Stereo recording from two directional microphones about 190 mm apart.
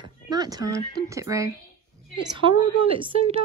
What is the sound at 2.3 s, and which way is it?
Speech, 25° right (ahead or behind).